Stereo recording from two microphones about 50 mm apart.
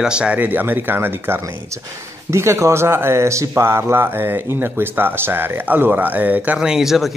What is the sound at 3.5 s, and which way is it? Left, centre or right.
Speech, right.